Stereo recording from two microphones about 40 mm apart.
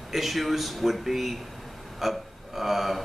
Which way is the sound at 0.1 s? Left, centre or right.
Centre.